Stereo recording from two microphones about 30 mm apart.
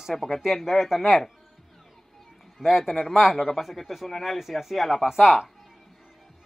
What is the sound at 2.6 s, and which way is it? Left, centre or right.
Speech, centre.